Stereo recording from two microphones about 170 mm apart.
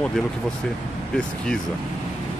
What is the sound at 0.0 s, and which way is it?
Speech, 5° left (ahead or behind).